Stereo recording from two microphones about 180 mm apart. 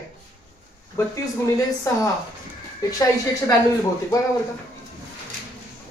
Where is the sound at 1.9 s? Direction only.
15° left (ahead or behind).